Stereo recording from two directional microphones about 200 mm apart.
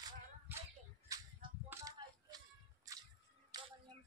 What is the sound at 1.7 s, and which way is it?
Shuffle, 15° right (ahead or behind).